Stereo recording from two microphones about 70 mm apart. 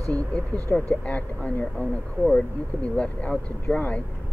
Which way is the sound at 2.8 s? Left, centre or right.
Centre.